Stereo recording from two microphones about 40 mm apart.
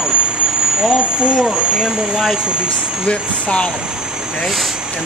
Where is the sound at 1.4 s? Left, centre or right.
Centre.